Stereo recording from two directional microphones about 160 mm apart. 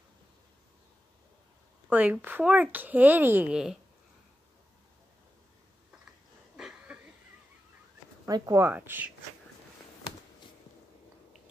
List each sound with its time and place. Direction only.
1.9 s speech: 10° right (ahead or behind)
6.5 s a sound: 5° right (ahead or behind)
8.3 s speech: 25° right (ahead or behind)
8.6 s speech: 10° right (ahead or behind)